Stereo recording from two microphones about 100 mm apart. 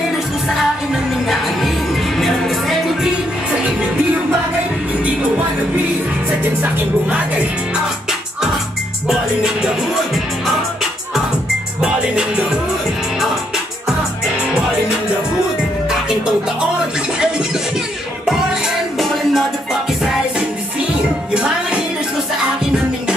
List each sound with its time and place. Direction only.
1.2 s music: centre (ahead or behind)
7.7 s music: 5° right (ahead or behind)
18.2 s music: 5° right (ahead or behind)